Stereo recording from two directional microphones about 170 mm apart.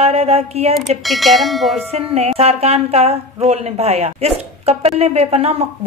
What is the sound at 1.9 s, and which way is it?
A woman's voice, 40° right (ahead or behind).